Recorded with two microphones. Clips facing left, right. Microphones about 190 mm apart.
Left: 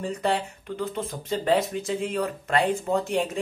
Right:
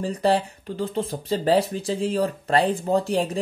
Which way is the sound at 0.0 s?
35° right (ahead or behind).